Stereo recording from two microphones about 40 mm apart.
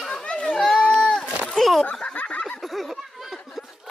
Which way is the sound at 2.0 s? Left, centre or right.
Left.